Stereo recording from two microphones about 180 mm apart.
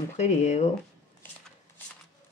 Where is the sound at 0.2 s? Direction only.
40° left (ahead or behind).